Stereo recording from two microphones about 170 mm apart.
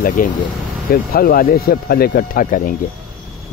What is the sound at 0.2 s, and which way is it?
Speech, 55° left (ahead or behind).